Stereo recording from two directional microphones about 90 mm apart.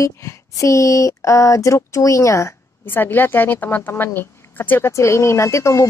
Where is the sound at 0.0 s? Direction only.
35° left (ahead or behind).